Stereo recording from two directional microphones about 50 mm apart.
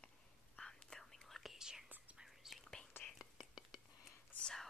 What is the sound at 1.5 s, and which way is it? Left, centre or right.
Whispering, centre.